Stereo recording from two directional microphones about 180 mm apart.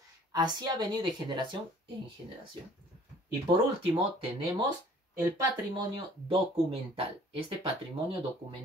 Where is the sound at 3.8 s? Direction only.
30° right (ahead or behind).